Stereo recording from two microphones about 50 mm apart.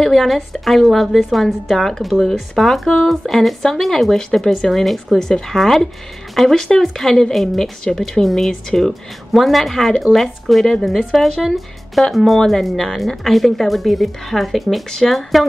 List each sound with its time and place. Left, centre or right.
0.0 s speech: centre